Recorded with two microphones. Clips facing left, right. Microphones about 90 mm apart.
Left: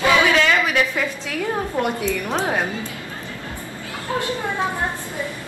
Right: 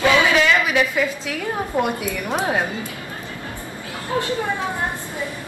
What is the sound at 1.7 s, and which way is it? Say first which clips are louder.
Speech: right 2 dB; 15° right (ahead or behind).